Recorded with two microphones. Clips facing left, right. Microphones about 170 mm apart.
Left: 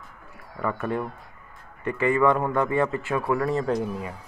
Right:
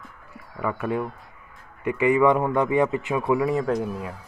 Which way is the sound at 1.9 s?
15° right (ahead or behind).